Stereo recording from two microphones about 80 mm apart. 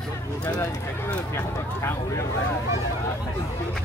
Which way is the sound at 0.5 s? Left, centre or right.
Left.